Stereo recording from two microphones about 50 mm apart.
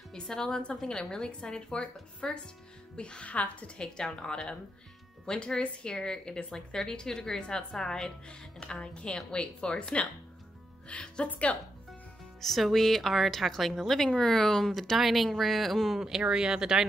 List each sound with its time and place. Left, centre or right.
0.1 s a woman's voice: centre
3.8 s a woman's voice: centre
12.4 s a woman's voice: centre
16.0 s speech: centre